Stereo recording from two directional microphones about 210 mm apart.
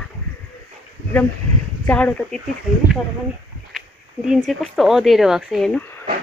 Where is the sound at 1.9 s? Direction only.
5° left (ahead or behind).